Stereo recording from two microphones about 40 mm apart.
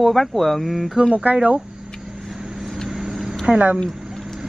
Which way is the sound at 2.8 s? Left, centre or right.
Centre.